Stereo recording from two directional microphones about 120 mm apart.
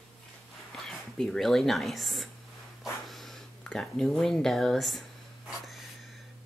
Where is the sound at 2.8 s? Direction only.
Centre (ahead or behind).